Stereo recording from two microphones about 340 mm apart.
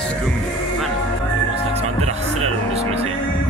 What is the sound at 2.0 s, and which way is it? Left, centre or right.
Music, centre.